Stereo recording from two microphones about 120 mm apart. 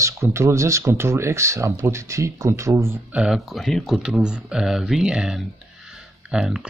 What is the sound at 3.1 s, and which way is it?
Speech, 5° right (ahead or behind).